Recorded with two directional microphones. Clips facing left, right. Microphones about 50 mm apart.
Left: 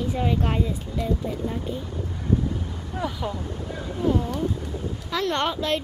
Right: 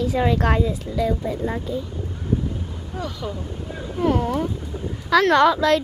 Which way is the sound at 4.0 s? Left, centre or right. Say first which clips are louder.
Right 4 dB; right.